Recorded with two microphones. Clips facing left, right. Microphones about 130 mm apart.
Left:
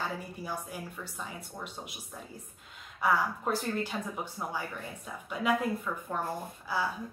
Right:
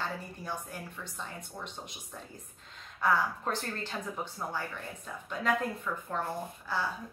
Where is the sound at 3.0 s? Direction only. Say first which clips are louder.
Even; 10° left (ahead or behind).